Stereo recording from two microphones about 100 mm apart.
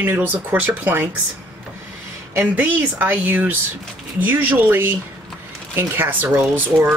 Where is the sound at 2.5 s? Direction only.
20° right (ahead or behind).